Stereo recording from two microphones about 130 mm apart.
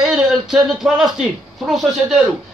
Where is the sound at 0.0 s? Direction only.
5° right (ahead or behind).